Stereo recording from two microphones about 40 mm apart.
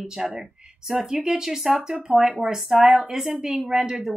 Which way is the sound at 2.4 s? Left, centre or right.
Right.